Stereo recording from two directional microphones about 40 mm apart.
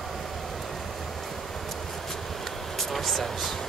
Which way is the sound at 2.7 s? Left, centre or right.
Centre.